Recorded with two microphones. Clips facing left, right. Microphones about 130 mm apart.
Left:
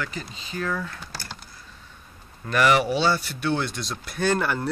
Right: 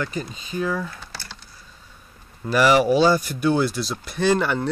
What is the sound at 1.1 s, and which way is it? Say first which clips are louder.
Typing: left 1 dB; 45° left (ahead or behind).